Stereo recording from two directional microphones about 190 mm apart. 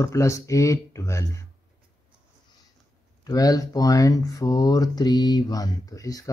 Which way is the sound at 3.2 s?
20° left (ahead or behind).